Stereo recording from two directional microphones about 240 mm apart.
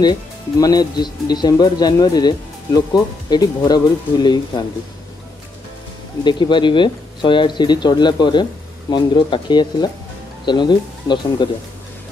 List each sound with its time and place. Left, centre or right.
0.0 s speech: centre
6.2 s speech: centre